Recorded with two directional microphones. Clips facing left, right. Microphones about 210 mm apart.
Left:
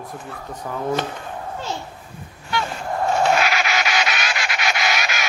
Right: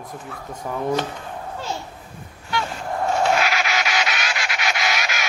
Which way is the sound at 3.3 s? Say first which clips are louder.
Left 1 dB; 60° left (ahead or behind).